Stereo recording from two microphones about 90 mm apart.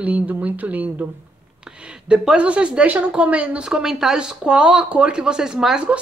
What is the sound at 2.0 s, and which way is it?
Speech, 10° right (ahead or behind).